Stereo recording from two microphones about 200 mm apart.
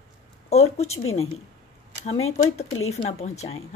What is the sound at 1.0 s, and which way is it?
Speech, 90° left.